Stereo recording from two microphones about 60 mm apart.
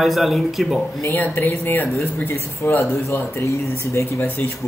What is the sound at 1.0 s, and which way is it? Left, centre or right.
Speech, left.